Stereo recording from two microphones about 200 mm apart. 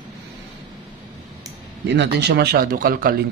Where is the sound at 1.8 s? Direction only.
60° right (ahead or behind).